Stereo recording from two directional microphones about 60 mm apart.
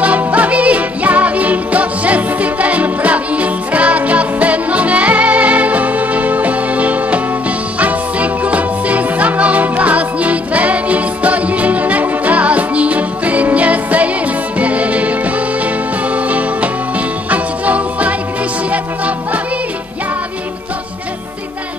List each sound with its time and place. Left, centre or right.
0.0 s music: right
16.3 s music: right